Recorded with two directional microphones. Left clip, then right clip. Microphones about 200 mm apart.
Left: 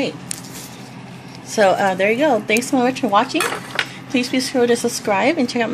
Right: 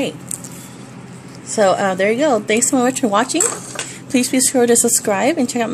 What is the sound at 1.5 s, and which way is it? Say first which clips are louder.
A woman's voice: even; 10° right (ahead or behind).